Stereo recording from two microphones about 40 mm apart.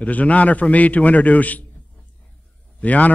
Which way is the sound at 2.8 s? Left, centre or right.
Left.